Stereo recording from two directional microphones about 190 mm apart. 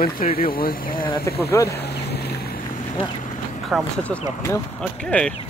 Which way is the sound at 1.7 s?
60° left (ahead or behind).